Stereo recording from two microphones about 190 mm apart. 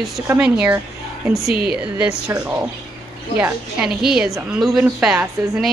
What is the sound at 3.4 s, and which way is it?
A woman's voice, 5° right (ahead or behind).